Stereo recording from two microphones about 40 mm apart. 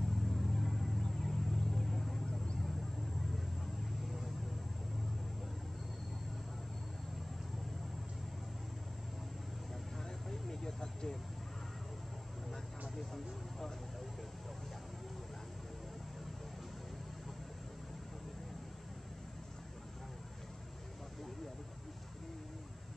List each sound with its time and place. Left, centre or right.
0.0 s vehicle: centre
10.3 s a sound: centre
13.1 s vehicle: centre